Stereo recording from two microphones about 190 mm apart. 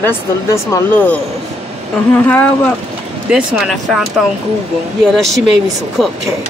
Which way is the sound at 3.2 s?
5° right (ahead or behind).